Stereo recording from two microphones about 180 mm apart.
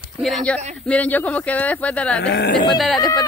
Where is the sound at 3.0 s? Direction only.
20° left (ahead or behind).